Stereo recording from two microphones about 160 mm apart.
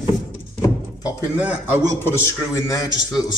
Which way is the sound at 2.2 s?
20° left (ahead or behind).